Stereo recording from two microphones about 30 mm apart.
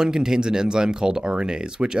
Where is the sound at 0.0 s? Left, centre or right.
Right.